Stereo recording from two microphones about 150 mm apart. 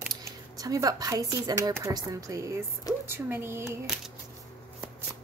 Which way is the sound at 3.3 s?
15° right (ahead or behind).